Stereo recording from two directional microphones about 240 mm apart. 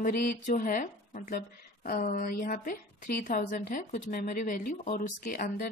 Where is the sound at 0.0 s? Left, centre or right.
Left.